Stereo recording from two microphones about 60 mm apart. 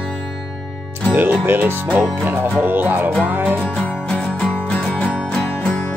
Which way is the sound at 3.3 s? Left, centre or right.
Right.